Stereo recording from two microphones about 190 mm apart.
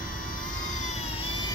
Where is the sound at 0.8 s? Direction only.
30° left (ahead or behind).